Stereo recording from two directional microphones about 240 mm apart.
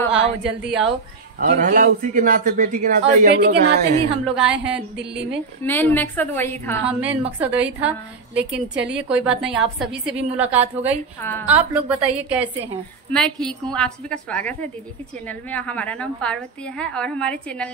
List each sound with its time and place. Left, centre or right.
0.1 s a woman's voice: centre
1.4 s a man's voice: right
3.3 s a woman's voice: right
4.4 s a woman's voice: centre
5.6 s a woman's voice: centre
6.9 s a woman's voice: centre
8.4 s a woman's voice: centre
11.1 s a woman's voice: centre
11.4 s a woman's voice: centre